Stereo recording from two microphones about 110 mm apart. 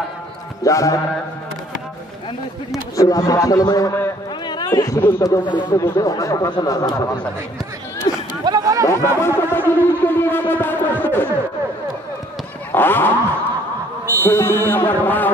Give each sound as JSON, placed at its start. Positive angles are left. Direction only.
{"t": 0.7, "sound": "music", "side_deg": 30}
{"t": 3.0, "sound": "a man's voice", "side_deg": 35}
{"t": 5.4, "sound": "speech", "side_deg": 45}
{"t": 5.8, "sound": "a man's voice", "side_deg": 30}
{"t": 8.1, "sound": "chatter", "side_deg": 45}
{"t": 8.5, "sound": "a sound", "side_deg": -35}
{"t": 8.8, "sound": "music", "side_deg": 25}
{"t": 12.7, "sound": "music", "side_deg": 20}
{"t": 14.2, "sound": "music", "side_deg": 20}